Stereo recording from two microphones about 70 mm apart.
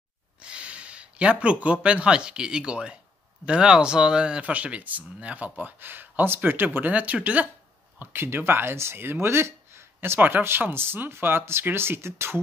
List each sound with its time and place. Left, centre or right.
0.4 s speech: centre
8.0 s speech: right